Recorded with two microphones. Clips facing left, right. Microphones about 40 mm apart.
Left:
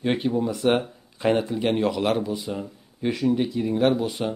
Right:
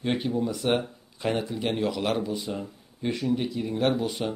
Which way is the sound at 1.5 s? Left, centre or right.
Centre.